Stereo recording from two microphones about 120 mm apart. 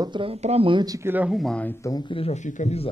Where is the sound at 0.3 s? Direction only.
60° right (ahead or behind).